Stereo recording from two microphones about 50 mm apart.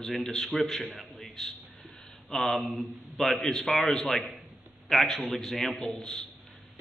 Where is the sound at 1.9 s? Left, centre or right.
Centre.